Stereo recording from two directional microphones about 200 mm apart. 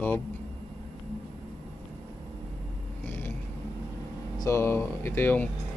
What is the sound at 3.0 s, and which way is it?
Vehicle, 10° left (ahead or behind).